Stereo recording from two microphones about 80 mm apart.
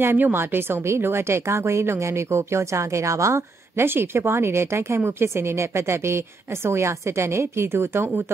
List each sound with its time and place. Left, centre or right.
0.0 s speech: right